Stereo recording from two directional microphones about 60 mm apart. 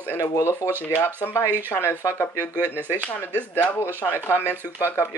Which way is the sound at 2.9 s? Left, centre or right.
Left.